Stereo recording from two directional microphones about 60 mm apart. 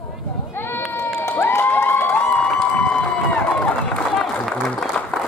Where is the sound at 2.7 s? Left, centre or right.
Left.